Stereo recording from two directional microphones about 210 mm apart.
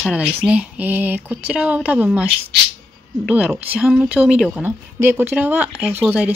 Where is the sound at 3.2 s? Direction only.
5° right (ahead or behind).